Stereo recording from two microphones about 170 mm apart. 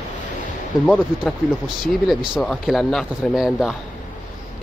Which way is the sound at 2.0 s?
5° right (ahead or behind).